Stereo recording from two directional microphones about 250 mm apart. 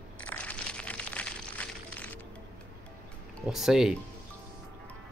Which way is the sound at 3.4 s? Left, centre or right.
Centre.